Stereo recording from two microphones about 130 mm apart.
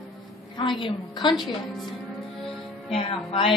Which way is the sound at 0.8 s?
35° left (ahead or behind).